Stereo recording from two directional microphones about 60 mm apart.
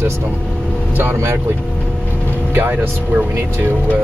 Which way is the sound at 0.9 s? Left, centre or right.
Right.